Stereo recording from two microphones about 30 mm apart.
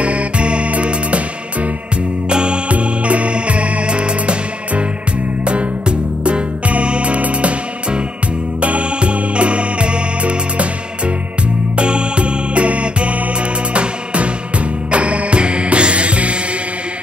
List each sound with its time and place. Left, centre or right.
0.0 s music: right
2.2 s music: right
2.7 s music: right
8.5 s music: right
11.7 s music: right